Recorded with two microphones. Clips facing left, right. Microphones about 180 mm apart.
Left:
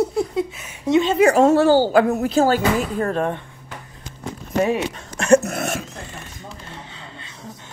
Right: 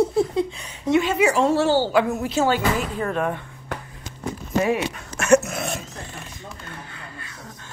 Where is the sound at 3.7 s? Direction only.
65° right (ahead or behind).